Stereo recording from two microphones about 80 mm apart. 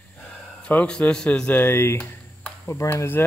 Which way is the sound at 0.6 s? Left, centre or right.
Centre.